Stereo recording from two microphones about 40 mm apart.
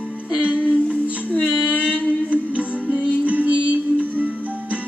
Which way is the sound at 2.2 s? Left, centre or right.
Right.